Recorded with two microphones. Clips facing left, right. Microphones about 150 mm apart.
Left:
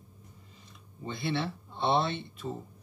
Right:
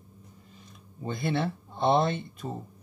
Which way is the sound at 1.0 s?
45° right (ahead or behind).